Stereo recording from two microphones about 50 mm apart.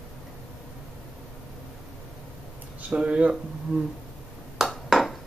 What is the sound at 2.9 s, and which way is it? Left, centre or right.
Speech, right.